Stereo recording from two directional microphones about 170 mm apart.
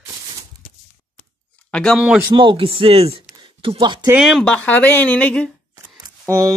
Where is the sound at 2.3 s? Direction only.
30° right (ahead or behind).